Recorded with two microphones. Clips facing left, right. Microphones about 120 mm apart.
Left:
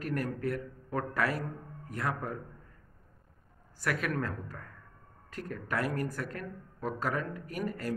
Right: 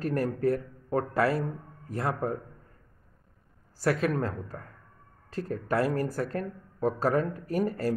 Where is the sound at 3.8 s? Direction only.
30° right (ahead or behind).